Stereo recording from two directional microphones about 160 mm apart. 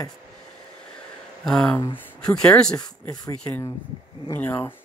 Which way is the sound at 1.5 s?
5° left (ahead or behind).